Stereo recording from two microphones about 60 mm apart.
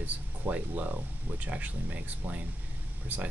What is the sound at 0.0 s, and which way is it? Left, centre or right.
Speech, right.